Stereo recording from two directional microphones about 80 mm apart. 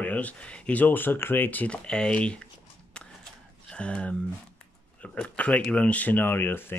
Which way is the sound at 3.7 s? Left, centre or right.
Centre.